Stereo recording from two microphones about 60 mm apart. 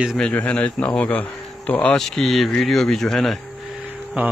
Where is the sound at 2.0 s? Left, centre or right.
Centre.